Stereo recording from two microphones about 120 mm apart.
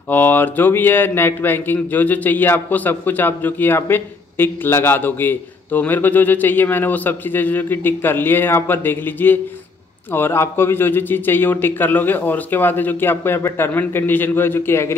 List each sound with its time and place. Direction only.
0.1 s speech: 15° left (ahead or behind)